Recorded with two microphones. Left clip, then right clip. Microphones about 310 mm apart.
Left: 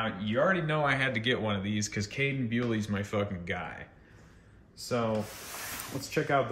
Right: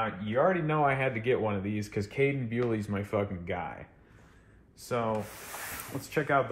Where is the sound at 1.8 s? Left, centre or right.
Centre.